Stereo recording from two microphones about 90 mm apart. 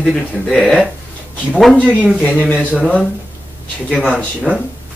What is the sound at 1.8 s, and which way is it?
Speech, 15° right (ahead or behind).